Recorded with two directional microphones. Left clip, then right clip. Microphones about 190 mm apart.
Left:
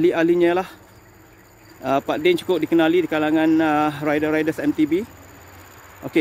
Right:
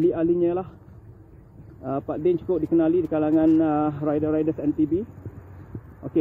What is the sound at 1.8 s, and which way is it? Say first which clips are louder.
Speech: left 8 dB; 90° left.